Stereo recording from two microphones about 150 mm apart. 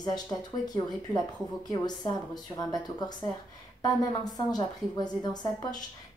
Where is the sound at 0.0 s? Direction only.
25° left (ahead or behind).